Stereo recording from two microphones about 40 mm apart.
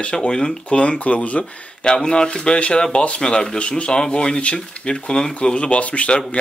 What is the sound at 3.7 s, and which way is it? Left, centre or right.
Speech, left.